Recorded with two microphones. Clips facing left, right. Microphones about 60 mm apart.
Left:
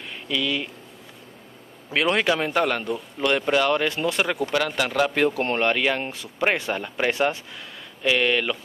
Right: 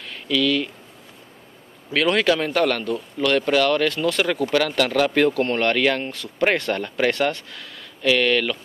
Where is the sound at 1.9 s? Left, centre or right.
Centre.